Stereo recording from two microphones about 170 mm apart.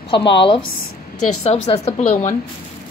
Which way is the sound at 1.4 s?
40° left (ahead or behind).